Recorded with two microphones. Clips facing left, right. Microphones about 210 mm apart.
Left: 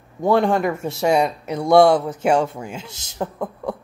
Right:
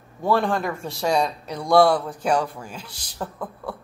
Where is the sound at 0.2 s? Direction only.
20° left (ahead or behind).